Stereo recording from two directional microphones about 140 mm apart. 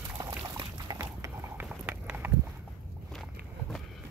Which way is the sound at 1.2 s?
15° right (ahead or behind).